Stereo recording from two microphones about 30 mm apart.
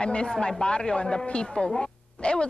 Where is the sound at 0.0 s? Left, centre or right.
Left.